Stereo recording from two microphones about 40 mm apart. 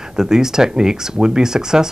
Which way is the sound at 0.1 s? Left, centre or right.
Centre.